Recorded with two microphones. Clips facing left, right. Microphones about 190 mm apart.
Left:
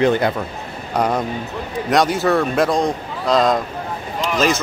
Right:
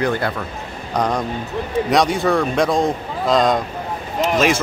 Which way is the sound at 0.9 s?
5° left (ahead or behind).